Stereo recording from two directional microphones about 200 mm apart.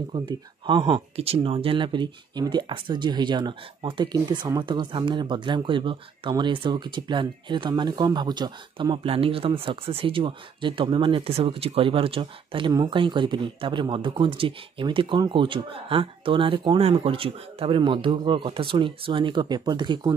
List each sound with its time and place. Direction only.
0.1 s speech: 25° right (ahead or behind)